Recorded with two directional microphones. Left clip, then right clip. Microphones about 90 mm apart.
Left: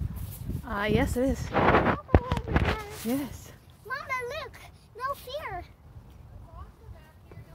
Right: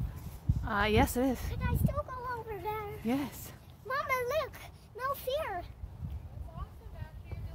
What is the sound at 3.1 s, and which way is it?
Speech, 15° left (ahead or behind).